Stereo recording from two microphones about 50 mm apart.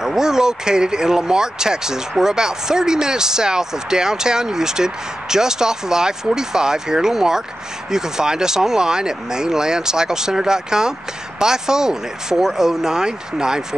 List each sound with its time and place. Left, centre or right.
0.0 s speech: centre